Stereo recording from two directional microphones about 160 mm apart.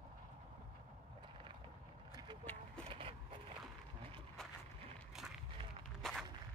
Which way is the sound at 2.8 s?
35° right (ahead or behind).